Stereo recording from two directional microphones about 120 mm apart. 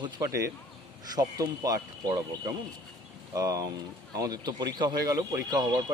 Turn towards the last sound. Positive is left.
turn(degrees=-35)  # may be behind; listen again after turning